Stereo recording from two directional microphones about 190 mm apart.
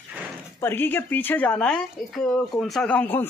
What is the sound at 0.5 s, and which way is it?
Speech, 10° left (ahead or behind).